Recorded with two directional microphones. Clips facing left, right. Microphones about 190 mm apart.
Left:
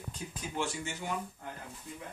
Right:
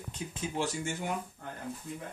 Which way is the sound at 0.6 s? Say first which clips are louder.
Right 2 dB; 40° right (ahead or behind).